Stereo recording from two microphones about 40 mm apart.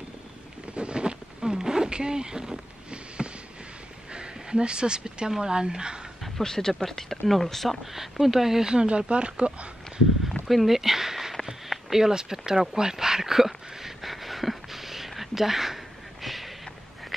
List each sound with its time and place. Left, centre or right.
0.7 s a sound: right
4.1 s speech: right
6.4 s speech: centre
7.8 s speech: centre
8.6 s speech: right
10.4 s speech: centre
11.7 s a sound: centre